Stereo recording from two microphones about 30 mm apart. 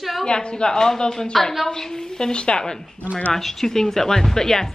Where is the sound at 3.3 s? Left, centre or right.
Centre.